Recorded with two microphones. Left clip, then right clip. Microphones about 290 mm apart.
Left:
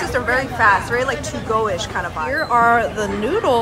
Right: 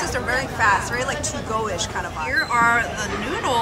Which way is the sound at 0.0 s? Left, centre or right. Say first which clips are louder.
Left 4 dB; centre.